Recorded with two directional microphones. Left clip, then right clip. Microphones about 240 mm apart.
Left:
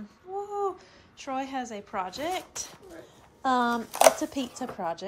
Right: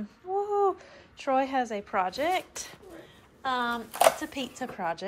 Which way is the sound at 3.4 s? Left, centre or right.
Left.